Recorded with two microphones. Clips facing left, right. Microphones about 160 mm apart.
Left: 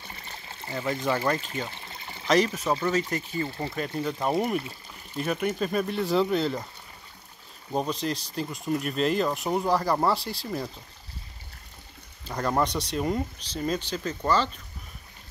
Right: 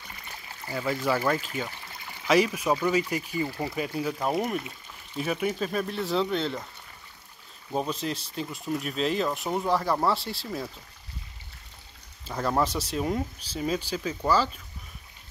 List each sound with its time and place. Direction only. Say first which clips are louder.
0.0 s pour: left 1 dB; 30° left (ahead or behind)
1.0 s speech: even; 5° right (ahead or behind)
1.7 s pour: left 1 dB; 25° left (ahead or behind)
2.2 s speech: even; 5° right (ahead or behind)
7.7 s speech: left 1 dB; centre (ahead or behind)
12.3 s speech: even; 5° right (ahead or behind)